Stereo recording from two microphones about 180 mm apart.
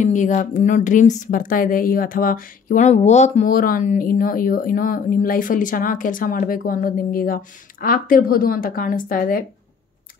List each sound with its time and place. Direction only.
0.0 s a woman's voice: 45° left (ahead or behind)